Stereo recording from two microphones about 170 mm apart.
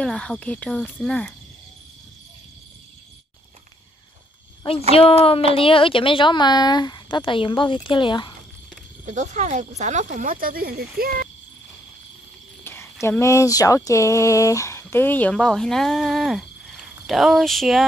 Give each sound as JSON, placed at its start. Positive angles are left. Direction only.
{"t": 0.0, "sound": "speech", "side_deg": 5}
{"t": 4.9, "sound": "speech", "side_deg": 35}
{"t": 9.0, "sound": "speech", "side_deg": -45}
{"t": 12.6, "sound": "cricket", "side_deg": 15}
{"t": 13.0, "sound": "speech", "side_deg": 15}